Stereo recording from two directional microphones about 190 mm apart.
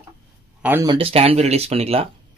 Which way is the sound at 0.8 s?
25° right (ahead or behind).